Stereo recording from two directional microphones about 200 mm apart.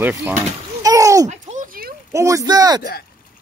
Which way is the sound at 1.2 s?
40° right (ahead or behind).